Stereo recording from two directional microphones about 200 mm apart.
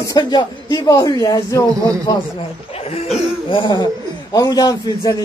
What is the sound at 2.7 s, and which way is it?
Speech, 30° left (ahead or behind).